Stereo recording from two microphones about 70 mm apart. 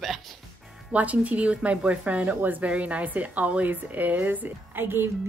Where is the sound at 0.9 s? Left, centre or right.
Right.